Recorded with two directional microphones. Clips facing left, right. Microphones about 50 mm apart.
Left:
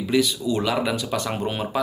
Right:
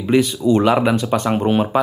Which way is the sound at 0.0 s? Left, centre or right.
Right.